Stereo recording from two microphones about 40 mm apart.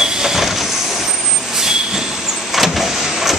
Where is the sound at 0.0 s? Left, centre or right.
Centre.